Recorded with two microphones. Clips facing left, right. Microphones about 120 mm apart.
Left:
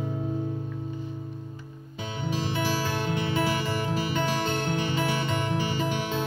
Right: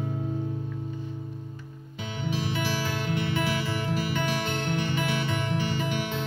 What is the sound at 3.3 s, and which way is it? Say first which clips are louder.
Music: left 2 dB; 25° left (ahead or behind).